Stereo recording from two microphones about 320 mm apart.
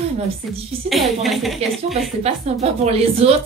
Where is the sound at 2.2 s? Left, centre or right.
Centre.